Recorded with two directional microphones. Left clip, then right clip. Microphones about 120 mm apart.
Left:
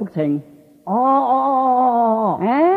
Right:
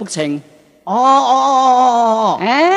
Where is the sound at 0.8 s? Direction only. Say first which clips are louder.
Right 5 dB; 30° right (ahead or behind).